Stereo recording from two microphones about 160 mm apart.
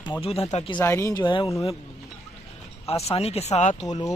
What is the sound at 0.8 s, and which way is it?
Speech, 20° left (ahead or behind).